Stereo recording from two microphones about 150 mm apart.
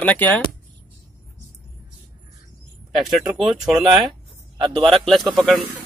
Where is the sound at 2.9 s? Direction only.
Centre (ahead or behind).